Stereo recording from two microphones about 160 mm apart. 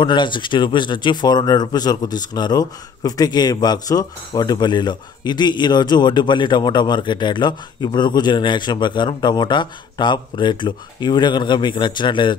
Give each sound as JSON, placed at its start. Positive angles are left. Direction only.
{"t": 0.0, "sound": "speech", "side_deg": 30}